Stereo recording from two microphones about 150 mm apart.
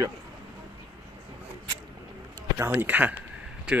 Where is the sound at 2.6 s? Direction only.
10° right (ahead or behind).